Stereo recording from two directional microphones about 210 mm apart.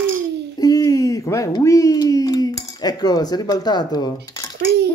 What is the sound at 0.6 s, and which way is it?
Speech, 15° left (ahead or behind).